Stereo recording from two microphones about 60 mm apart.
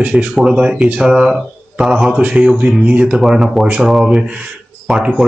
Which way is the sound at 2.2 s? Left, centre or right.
Centre.